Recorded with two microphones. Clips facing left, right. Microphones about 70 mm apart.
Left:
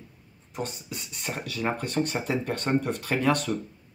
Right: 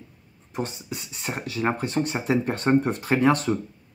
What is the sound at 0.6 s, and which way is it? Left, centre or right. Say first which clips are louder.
Speech: right 3 dB; centre.